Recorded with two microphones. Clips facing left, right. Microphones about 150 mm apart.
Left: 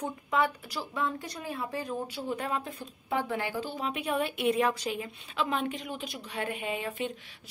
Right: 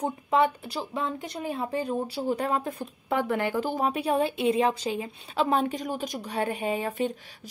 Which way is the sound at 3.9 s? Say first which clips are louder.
Right 2 dB; 35° right (ahead or behind).